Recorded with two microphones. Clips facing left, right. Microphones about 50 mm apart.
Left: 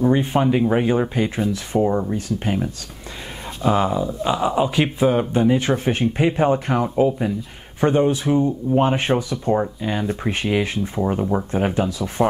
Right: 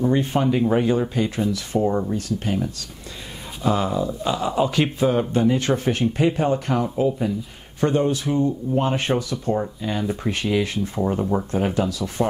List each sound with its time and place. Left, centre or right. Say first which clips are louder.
0.0 s speech: left 2 dB; centre